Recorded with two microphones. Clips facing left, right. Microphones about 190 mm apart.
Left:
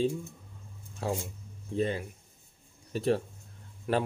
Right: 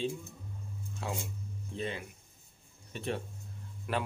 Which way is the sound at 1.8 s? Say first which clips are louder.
Left 8 dB; 40° left (ahead or behind).